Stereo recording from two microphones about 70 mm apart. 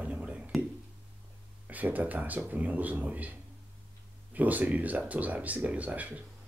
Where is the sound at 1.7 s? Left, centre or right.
Right.